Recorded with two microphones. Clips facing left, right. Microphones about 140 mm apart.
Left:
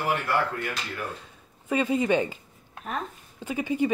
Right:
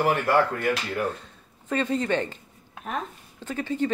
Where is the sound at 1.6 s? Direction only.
10° left (ahead or behind).